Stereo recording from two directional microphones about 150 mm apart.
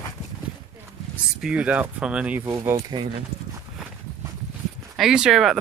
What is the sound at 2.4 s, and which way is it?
Speech, 25° right (ahead or behind).